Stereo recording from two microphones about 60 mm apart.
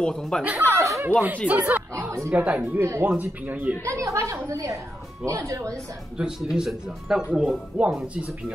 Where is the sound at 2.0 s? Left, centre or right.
Right.